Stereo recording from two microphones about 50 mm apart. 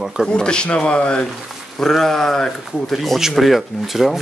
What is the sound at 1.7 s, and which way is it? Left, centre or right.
Speech, centre.